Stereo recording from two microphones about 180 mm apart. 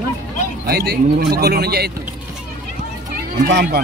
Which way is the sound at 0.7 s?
60° right (ahead or behind).